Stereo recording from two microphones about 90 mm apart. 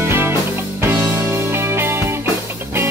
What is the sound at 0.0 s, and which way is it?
Music, 25° right (ahead or behind).